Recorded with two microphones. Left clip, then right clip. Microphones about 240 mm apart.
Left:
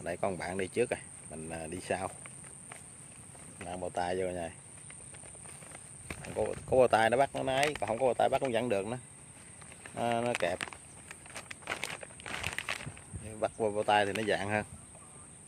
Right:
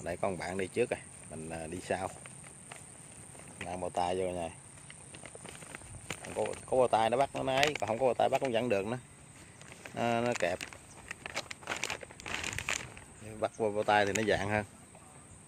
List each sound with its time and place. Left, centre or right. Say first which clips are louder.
0.0 s speech: even; centre
3.5 s speech: right 1 dB; centre
6.7 s speech: left 2 dB; left
7.4 s speech: right 1 dB; centre
8.7 s speech: right 1 dB; centre
10.3 s speech: even; centre
11.6 s a sound: left 2 dB; centre
13.2 s speech: left 1 dB; centre